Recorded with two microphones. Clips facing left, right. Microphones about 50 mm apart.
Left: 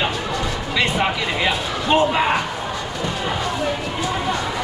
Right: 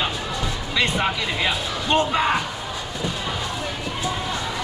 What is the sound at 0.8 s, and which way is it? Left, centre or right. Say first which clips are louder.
Speech: left 2 dB; centre.